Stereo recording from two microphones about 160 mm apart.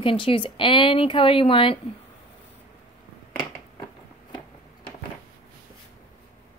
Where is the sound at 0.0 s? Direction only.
35° left (ahead or behind).